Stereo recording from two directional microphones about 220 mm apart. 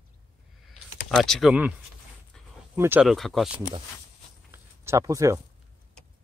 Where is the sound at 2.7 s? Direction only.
10° right (ahead or behind).